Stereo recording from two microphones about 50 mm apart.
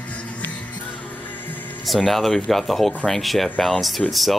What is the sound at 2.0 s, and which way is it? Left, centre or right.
Speech, centre.